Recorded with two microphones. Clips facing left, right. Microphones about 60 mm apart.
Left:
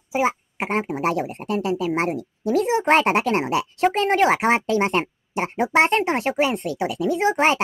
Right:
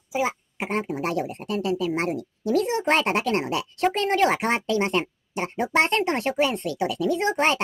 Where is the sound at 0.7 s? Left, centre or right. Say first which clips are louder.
Left 3 dB; centre.